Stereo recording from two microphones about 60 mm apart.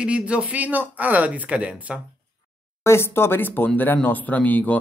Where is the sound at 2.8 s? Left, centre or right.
Left.